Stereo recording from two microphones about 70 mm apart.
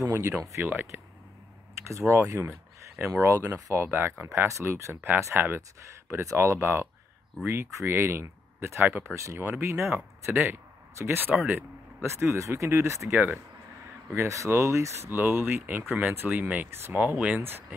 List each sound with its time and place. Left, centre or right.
0.0 s speech: right
0.7 s speech: right
1.9 s speech: right
16.7 s speech: right
17.0 s speech: right